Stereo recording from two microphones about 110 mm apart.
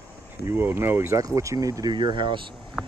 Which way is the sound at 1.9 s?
45° right (ahead or behind).